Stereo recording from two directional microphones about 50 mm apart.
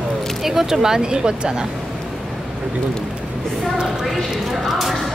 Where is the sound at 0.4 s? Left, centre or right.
Centre.